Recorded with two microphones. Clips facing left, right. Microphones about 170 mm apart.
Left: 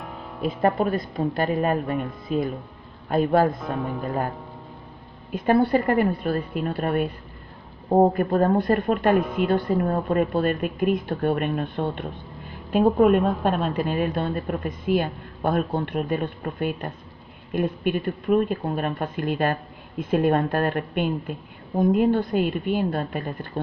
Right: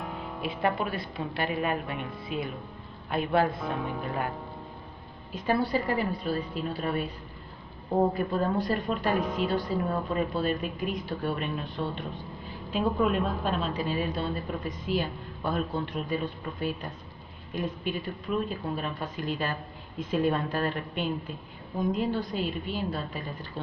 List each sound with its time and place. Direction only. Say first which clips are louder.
0.0 s music: even; centre (ahead or behind)
0.4 s a woman's voice: left 7 dB; 40° left (ahead or behind)
3.6 s a woman's voice: left 4 dB; centre (ahead or behind)
5.3 s a woman's voice: left 7 dB; 55° left (ahead or behind)
8.1 s a woman's voice: left 7 dB; 55° left (ahead or behind)
9.1 s a woman's voice: left 6 dB; centre (ahead or behind)
9.5 s a woman's voice: left 6 dB; 60° left (ahead or behind)